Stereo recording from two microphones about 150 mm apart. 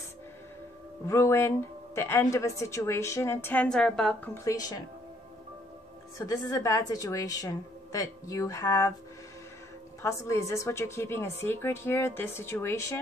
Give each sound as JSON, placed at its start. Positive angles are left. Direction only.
{"t": 1.0, "sound": "a woman's voice", "side_deg": 20}
{"t": 4.5, "sound": "a woman's voice", "side_deg": 25}
{"t": 6.1, "sound": "a woman's voice", "side_deg": 20}
{"t": 10.0, "sound": "a woman's voice", "side_deg": 20}